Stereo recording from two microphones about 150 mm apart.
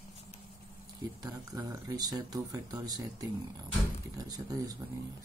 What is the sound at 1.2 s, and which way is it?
Speech, 25° right (ahead or behind).